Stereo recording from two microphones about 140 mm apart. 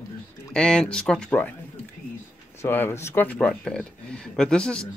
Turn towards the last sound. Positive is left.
turn(degrees=5)  # may be behind; listen again after turning